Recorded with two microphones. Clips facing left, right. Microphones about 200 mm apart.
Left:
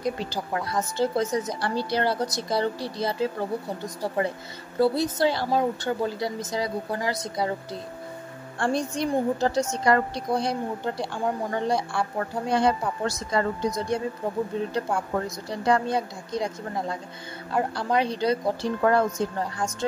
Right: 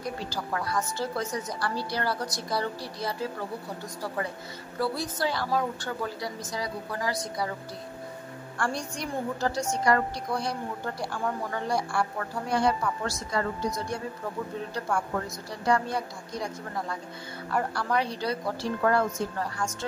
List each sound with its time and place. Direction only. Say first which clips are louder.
0.0 s a woman's voice: left 5 dB; 20° left (ahead or behind)
4.7 s a woman's voice: left 8 dB; 25° left (ahead or behind)
8.5 s a woman's voice: left 6 dB; 25° left (ahead or behind)